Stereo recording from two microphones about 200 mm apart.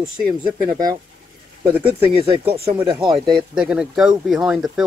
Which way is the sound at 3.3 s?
Centre (ahead or behind).